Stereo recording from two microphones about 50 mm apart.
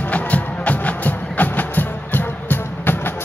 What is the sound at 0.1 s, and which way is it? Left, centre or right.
Music, left.